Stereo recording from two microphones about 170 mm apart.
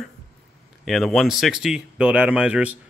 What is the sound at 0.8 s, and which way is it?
Speech, centre (ahead or behind).